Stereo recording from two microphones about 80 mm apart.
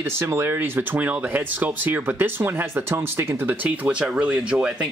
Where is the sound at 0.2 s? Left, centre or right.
Right.